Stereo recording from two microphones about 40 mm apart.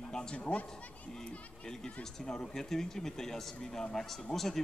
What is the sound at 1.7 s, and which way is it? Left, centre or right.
A man's voice, centre.